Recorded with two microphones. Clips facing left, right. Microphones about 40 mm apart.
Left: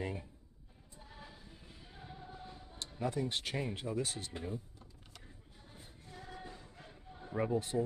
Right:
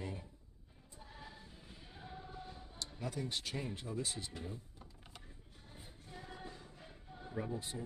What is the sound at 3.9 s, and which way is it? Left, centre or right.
Speech, left.